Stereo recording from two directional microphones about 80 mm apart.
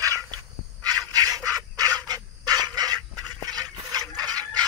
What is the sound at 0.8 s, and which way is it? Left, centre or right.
Bird, right.